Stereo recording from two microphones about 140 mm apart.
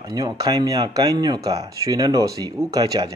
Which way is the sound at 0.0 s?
30° right (ahead or behind).